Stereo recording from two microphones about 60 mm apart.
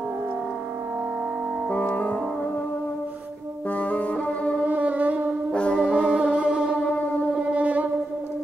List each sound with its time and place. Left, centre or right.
1.7 s music: left
3.7 s music: left
4.6 s music: right
5.5 s brass instrument: centre
5.9 s music: centre